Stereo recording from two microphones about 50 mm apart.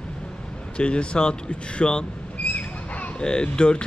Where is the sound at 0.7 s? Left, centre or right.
Left.